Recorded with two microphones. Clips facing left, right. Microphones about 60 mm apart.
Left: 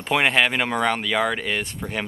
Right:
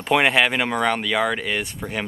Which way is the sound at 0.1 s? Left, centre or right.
Centre.